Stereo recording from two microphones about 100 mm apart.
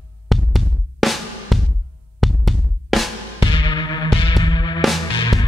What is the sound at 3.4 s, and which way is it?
Music, 55° left (ahead or behind).